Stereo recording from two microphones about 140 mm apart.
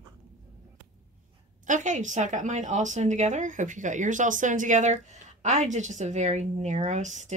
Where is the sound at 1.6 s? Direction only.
65° right (ahead or behind).